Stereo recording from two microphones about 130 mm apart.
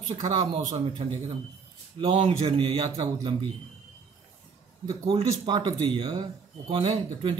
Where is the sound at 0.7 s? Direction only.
45° right (ahead or behind).